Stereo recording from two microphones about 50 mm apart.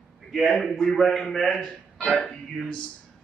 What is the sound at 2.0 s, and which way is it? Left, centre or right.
Speech, left.